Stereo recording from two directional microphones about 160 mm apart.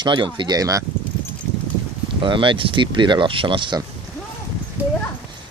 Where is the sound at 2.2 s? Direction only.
30° right (ahead or behind).